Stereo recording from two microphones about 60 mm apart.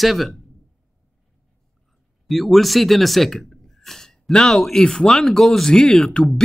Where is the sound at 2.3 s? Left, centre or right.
Centre.